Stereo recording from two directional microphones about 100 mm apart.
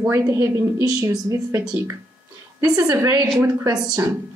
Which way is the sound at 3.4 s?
30° right (ahead or behind).